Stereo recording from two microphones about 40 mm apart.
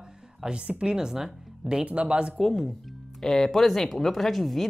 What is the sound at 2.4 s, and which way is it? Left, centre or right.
Speech, centre.